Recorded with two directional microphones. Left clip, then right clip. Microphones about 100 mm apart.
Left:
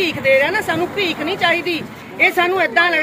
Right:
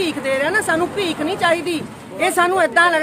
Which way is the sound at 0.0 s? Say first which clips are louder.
Left 5 dB; 50° right (ahead or behind).